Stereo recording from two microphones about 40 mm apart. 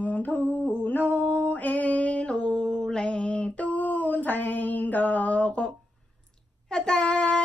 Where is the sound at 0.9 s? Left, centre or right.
Left.